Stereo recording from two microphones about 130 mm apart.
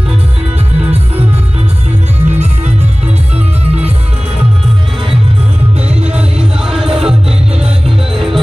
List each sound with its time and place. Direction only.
2.2 s music: 60° right (ahead or behind)
5.9 s music: 5° right (ahead or behind)